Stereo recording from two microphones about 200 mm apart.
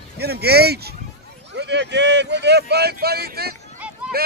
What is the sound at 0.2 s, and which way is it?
Speech, 50° right (ahead or behind).